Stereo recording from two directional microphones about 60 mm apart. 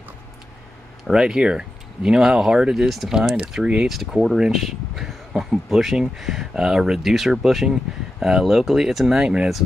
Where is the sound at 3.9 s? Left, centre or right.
Centre.